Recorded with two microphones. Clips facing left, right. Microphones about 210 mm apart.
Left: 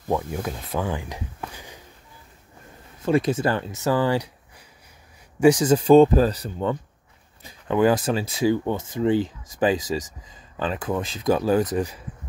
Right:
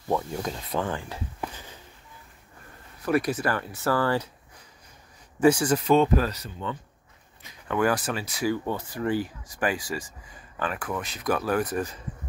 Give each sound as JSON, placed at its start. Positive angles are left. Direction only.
{"t": 0.1, "sound": "speech", "side_deg": 10}
{"t": 1.5, "sound": "a sound", "side_deg": 15}
{"t": 3.0, "sound": "speech", "side_deg": 25}
{"t": 5.8, "sound": "speech", "side_deg": 30}
{"t": 7.4, "sound": "speech", "side_deg": 30}
{"t": 11.7, "sound": "speech", "side_deg": 15}